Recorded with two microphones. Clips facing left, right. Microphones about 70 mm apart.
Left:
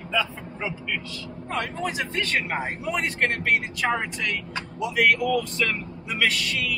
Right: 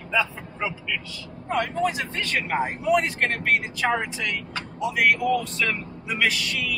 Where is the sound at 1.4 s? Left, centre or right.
Centre.